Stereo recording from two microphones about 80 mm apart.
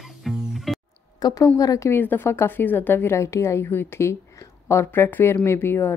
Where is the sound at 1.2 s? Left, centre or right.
Left.